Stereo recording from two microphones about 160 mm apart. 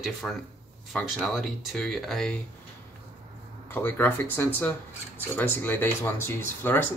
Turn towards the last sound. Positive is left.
turn(degrees=15)  # may be behind; listen again after turning